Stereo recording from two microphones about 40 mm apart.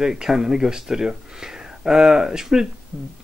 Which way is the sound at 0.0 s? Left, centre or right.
Centre.